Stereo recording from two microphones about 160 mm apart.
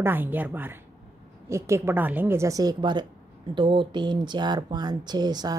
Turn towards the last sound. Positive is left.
turn(degrees=-25)  # may be behind; listen again after turning